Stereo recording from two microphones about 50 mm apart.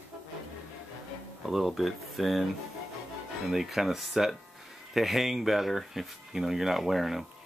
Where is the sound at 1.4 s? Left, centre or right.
Centre.